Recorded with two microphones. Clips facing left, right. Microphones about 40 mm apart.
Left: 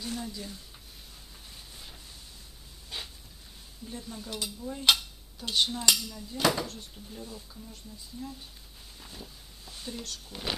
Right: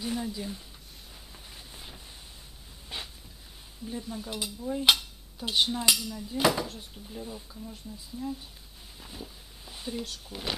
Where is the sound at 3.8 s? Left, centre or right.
Centre.